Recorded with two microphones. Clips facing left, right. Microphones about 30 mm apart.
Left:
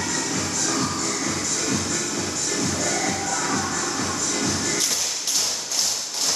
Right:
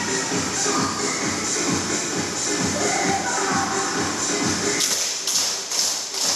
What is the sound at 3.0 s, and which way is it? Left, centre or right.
Music, centre.